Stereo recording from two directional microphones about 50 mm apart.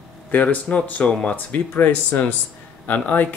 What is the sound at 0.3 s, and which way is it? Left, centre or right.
Speech, left.